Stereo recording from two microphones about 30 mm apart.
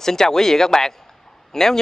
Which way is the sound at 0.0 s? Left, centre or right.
Centre.